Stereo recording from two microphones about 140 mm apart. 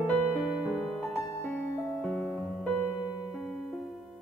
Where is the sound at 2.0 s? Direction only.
5° left (ahead or behind).